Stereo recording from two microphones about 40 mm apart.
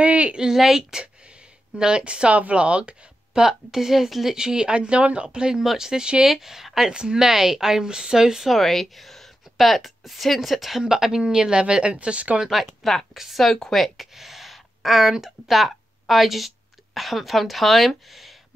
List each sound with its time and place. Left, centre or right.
0.0 s a sound: right
0.4 s speech: centre
3.4 s speech: centre
5.6 s speech: centre
6.9 s speech: right
8.5 s a woman's voice: centre
10.8 s speech: centre; by 12.4 s right
12.4 s speech: centre
14.1 s speech: centre